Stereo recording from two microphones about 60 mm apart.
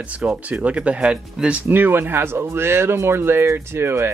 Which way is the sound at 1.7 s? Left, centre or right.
Right.